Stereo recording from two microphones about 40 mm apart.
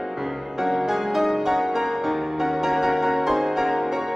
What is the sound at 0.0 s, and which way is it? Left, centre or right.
Music, centre.